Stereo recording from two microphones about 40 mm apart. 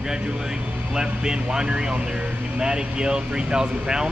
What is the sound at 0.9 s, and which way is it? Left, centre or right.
Speech, centre.